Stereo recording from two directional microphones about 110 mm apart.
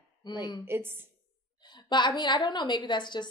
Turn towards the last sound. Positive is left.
turn(degrees=45)  # may be behind; listen again after turning